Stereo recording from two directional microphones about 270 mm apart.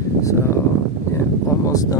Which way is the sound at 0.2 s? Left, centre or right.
Centre.